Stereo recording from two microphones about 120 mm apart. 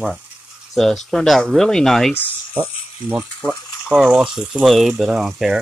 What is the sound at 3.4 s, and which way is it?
Speech, 5° right (ahead or behind).